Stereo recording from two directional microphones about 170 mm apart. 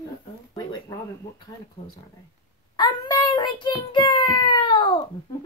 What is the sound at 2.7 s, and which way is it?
A child's voice, 25° left (ahead or behind).